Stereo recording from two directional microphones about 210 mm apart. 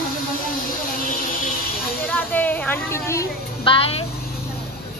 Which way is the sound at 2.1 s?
10° left (ahead or behind).